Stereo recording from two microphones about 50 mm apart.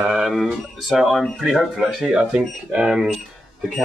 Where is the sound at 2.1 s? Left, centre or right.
Centre.